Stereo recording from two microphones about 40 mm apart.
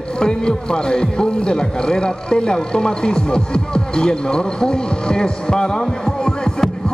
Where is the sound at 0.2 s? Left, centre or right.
Centre.